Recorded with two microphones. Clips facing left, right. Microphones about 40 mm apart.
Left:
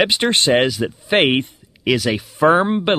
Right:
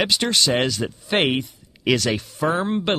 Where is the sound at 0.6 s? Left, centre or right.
Centre.